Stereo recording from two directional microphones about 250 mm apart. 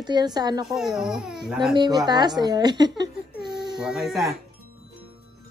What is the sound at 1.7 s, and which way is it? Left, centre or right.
A woman's voice, centre.